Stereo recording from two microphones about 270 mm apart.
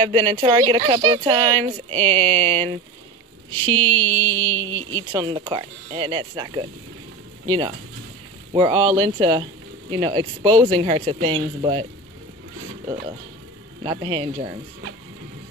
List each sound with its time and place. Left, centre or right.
0.0 s speech: centre
3.4 s a sound: centre
4.3 s speech: centre
4.6 s a sound: centre
4.9 s speech: centre
13.8 s speech: centre